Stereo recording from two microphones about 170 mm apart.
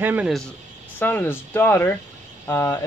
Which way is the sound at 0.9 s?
10° left (ahead or behind).